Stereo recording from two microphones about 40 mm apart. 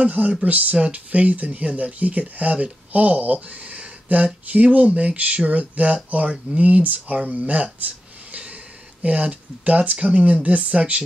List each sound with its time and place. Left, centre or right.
0.0 s speech: right
8.3 s snort: right
9.0 s speech: right